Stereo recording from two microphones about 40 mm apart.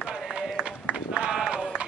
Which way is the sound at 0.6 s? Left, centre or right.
Right.